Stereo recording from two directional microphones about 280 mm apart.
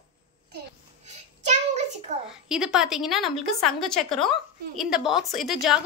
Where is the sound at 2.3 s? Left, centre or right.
Centre.